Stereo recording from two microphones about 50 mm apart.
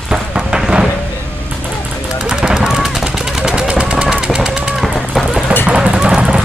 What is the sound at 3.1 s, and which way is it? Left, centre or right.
Machine gun, centre.